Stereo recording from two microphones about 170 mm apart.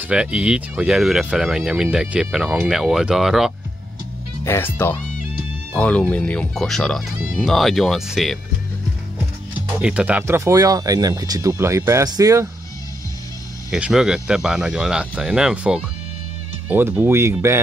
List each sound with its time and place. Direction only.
0.1 s speech: 5° right (ahead or behind)
4.5 s speech: 15° left (ahead or behind)
9.8 s speech: 5° right (ahead or behind)
13.7 s speech: 5° right (ahead or behind)